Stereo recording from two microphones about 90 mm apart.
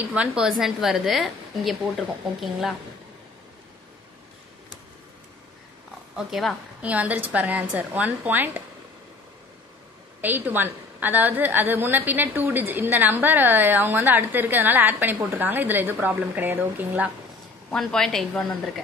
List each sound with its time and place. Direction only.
0.1 s a woman's voice: 10° right (ahead or behind)
6.1 s a woman's voice: 5° right (ahead or behind)
6.8 s a woman's voice: 15° right (ahead or behind)
10.2 s a woman's voice: 20° right (ahead or behind)
17.6 s a woman's voice: 5° left (ahead or behind)